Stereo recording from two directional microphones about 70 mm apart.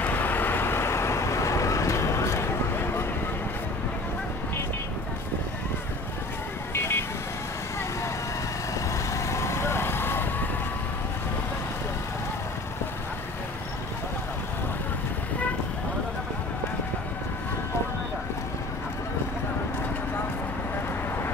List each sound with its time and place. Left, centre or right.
0.0 s vehicle: left
6.7 s vehicle: left
8.9 s vehicle: left